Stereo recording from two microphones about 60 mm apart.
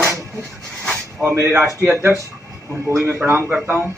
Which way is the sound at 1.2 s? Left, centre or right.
Right.